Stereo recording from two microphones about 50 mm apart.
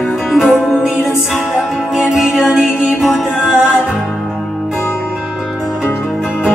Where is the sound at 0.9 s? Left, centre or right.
Left.